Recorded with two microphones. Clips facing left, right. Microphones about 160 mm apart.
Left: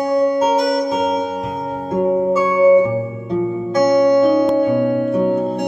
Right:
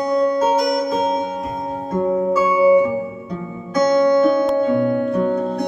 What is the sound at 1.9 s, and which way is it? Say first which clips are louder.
Music: left 2 dB; 20° left (ahead or behind).